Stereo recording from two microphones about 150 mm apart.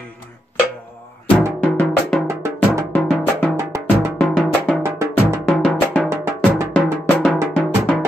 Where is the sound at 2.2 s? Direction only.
20° right (ahead or behind).